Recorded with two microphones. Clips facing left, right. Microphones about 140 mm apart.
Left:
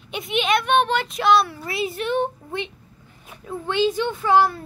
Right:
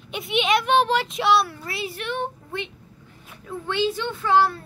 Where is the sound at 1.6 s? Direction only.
20° left (ahead or behind).